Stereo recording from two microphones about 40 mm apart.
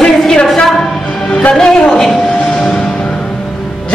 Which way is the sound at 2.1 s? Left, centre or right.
Left.